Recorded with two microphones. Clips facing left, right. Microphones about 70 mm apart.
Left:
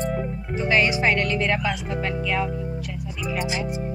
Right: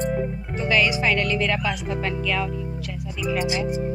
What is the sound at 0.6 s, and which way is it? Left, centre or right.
Music, left.